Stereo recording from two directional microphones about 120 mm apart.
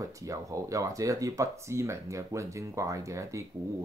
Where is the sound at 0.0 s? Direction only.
25° right (ahead or behind).